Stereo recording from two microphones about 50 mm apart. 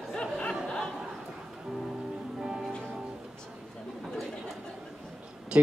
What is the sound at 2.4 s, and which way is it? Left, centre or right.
Music, centre.